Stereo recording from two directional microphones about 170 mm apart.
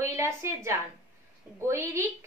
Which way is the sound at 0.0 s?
15° right (ahead or behind).